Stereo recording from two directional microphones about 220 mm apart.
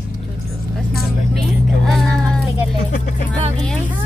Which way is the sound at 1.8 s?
Centre (ahead or behind).